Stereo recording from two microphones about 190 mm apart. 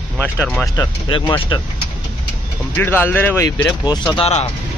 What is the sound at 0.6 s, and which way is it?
Speech, 20° left (ahead or behind).